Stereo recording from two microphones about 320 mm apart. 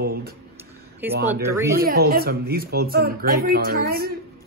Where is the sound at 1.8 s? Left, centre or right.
Right.